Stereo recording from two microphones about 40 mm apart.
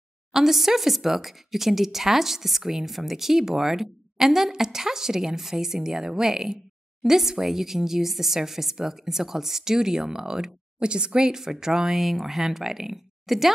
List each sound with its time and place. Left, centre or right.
0.3 s speech: centre
12.0 s speech: centre